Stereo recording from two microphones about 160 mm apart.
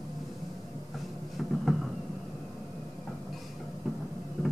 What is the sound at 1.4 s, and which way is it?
Music, centre (ahead or behind).